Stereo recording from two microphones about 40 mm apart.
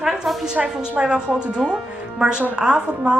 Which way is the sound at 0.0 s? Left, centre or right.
Centre.